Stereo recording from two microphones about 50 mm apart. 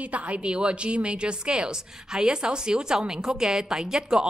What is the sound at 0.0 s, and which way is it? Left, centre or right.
A woman's voice, right.